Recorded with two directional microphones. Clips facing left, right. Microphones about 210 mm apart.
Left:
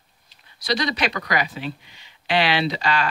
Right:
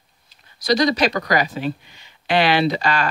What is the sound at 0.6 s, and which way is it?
Speech, 45° right (ahead or behind).